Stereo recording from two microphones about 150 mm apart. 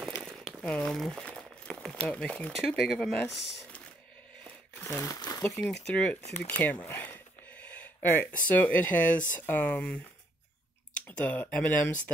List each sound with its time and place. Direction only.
0.2 s crumpling: centre (ahead or behind)
2.0 s speech: 5° left (ahead or behind)
4.7 s crumpling: 15° left (ahead or behind)
5.4 s speech: 10° left (ahead or behind)
11.1 s speech: 10° left (ahead or behind)